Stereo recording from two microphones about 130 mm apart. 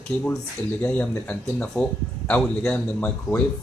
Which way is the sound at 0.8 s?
10° left (ahead or behind).